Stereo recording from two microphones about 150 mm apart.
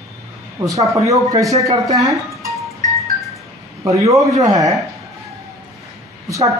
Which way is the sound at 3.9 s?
20° right (ahead or behind).